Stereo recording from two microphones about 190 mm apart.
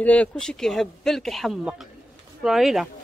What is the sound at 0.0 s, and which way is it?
Speech, 5° left (ahead or behind).